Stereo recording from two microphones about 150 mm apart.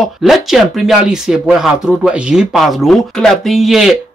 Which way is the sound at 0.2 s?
Centre (ahead or behind).